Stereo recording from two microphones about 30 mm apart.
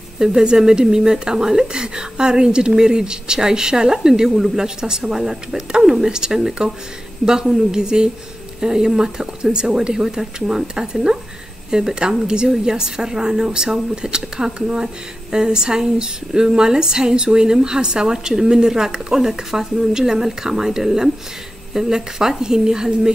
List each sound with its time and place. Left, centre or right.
0.2 s a woman's voice: right
18.1 s a woman's voice: centre